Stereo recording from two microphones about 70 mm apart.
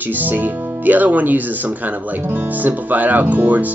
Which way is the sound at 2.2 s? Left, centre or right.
Right.